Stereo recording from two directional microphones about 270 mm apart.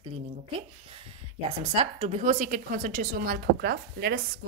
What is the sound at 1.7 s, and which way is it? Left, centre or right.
A woman's voice, right.